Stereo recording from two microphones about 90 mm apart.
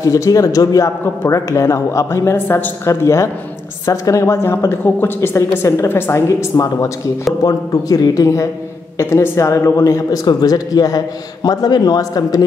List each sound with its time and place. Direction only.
0.0 s a man's voice: 40° left (ahead or behind)
6.2 s a man's voice: 40° left (ahead or behind)